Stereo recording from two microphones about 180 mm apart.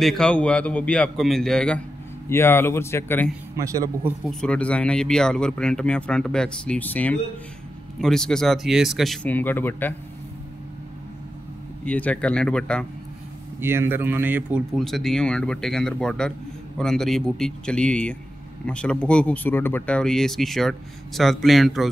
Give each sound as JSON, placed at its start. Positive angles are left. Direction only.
{"t": 0.0, "sound": "a man's voice", "side_deg": 5}
{"t": 3.5, "sound": "speech", "side_deg": -15}
{"t": 4.3, "sound": "a man's voice", "side_deg": 5}
{"t": 11.8, "sound": "speech", "side_deg": 5}
{"t": 13.6, "sound": "speech", "side_deg": -15}
{"t": 14.7, "sound": "a man's voice", "side_deg": 0}